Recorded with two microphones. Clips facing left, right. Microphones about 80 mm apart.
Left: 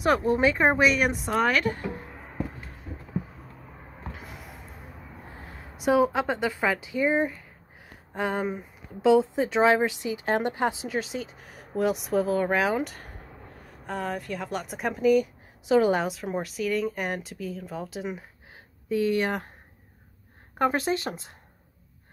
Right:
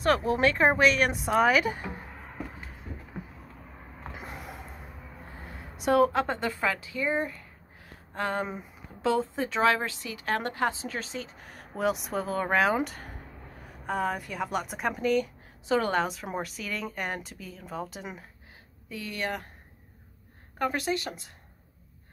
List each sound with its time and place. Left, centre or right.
0.2 s a woman's voice: centre
5.4 s a woman's voice: centre
18.9 s speech: left
20.5 s speech: left